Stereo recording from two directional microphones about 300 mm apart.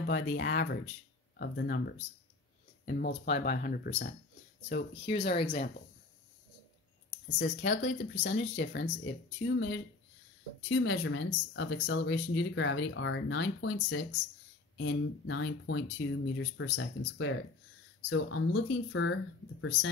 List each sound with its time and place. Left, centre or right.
0.0 s speech: left
5.0 s speech: centre
7.3 s speech: left
8.1 s speech: left